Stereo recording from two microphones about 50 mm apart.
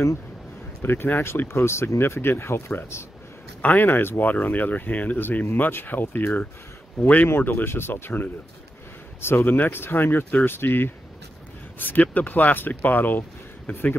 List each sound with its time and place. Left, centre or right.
0.8 s speech: left
1.5 s speech: left
3.6 s speech: left
4.2 s speech: left